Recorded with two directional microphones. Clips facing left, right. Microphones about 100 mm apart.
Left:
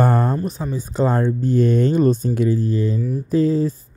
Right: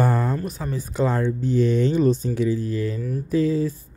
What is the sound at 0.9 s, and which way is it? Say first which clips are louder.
Speech: left 3 dB; 40° left (ahead or behind).